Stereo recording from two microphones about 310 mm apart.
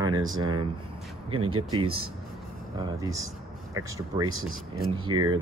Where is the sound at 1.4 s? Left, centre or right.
Right.